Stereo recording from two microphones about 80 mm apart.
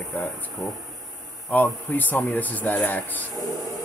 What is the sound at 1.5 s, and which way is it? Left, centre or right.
Speech, left.